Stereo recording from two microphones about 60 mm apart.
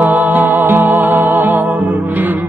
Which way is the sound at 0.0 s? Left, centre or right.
Right.